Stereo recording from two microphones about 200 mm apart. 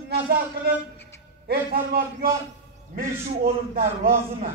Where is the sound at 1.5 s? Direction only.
50° right (ahead or behind).